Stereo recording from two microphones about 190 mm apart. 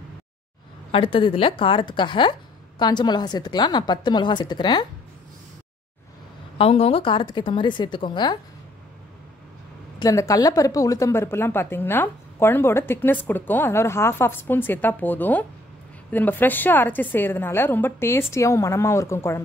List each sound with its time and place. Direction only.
0.9 s a woman's voice: 30° left (ahead or behind)
6.6 s a woman's voice: 30° left (ahead or behind)
9.9 s a woman's voice: 15° left (ahead or behind)